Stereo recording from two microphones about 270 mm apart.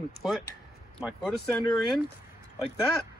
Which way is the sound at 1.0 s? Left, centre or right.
Centre.